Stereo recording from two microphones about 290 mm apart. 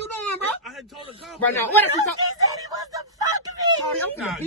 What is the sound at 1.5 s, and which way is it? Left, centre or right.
Speech, centre.